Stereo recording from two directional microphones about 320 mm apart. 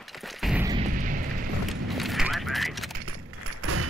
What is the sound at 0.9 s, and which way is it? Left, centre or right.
Eruption, right.